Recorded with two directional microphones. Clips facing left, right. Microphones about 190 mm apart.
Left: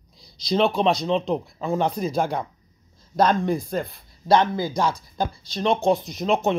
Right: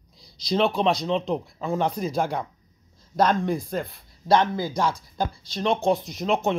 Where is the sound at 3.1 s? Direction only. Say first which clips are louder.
Left 2 dB; 35° left (ahead or behind).